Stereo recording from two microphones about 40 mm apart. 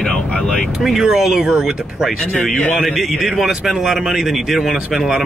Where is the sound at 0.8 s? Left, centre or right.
Centre.